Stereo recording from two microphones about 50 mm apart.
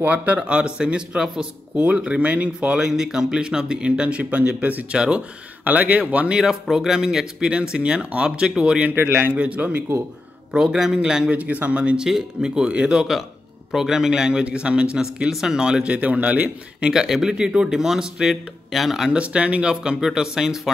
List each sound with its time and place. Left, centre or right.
0.0 s speech: right; by 1.5 s centre
1.8 s speech: right
2.8 s speech: centre; by 4.8 s right
4.9 s speech: centre
5.6 s speech: right
6.4 s speech: centre
9.2 s speech: right
10.5 s speech: centre
11.3 s speech: right
12.1 s speech: centre
15.9 s speech: right
16.8 s speech: centre
19.1 s speech: right